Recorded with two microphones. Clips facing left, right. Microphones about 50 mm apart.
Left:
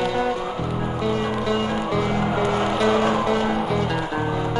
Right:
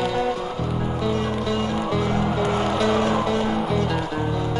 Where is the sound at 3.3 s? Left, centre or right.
Left.